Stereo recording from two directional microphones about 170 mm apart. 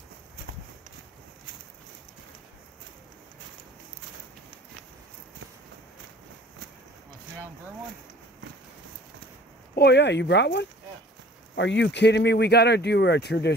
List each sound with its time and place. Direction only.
9.8 s speech: 85° left